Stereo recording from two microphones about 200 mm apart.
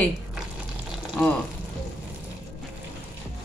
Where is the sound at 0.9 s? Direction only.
Centre (ahead or behind).